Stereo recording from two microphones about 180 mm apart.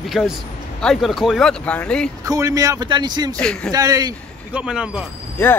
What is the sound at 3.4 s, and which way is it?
Speech, 5° left (ahead or behind).